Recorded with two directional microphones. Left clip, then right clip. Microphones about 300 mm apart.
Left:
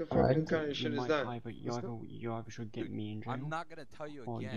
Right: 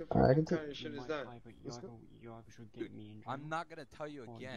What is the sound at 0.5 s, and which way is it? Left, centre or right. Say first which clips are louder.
Speech: left 5 dB; left.